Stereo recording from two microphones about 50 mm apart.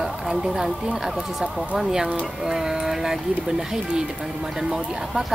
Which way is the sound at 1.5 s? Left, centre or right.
Right.